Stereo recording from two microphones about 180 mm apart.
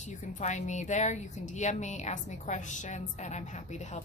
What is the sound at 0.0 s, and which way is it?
A woman's voice, 40° left (ahead or behind).